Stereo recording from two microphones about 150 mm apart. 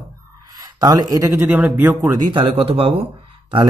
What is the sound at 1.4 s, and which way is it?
Speech, 10° right (ahead or behind).